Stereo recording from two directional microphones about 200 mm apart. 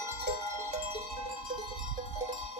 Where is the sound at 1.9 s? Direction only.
35° right (ahead or behind).